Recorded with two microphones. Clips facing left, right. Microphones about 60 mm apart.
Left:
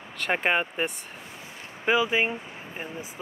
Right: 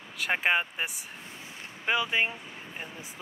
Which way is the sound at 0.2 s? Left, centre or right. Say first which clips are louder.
Left 2 dB; centre.